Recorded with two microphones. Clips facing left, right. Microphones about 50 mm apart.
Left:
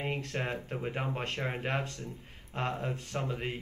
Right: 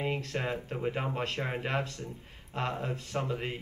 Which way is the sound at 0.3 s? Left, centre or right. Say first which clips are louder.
Right 1 dB; left.